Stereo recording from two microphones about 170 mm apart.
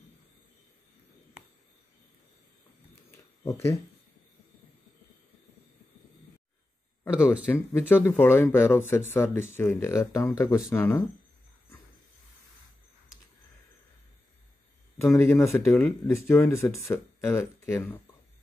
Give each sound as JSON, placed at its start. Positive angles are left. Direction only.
{"t": 3.1, "sound": "a sound", "side_deg": 15}
{"t": 7.2, "sound": "speech", "side_deg": -5}
{"t": 7.9, "sound": "speech", "side_deg": 10}
{"t": 15.0, "sound": "speech", "side_deg": 15}